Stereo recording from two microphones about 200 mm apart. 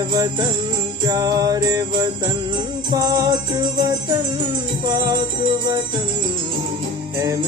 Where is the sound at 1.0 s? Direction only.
20° right (ahead or behind).